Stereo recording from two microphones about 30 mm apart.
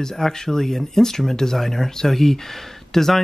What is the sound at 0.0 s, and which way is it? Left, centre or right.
Speech, centre.